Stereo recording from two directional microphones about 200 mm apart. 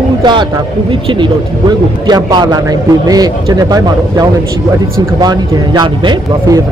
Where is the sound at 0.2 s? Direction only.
20° right (ahead or behind).